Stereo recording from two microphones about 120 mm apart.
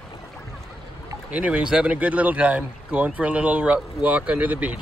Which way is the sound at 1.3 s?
10° right (ahead or behind).